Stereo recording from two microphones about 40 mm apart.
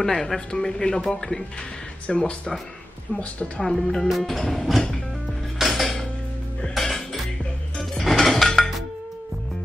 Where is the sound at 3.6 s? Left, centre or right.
Centre.